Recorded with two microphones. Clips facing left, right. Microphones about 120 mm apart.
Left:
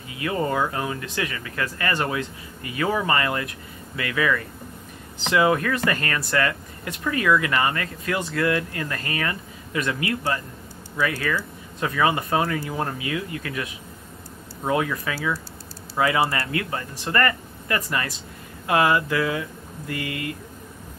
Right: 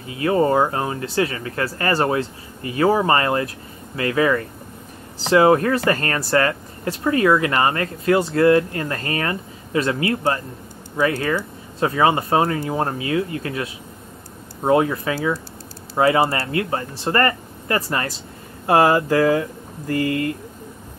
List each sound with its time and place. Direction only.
0.2 s speech: 35° right (ahead or behind)